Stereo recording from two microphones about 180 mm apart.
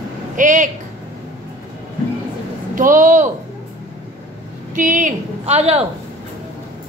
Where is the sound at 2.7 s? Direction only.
50° right (ahead or behind).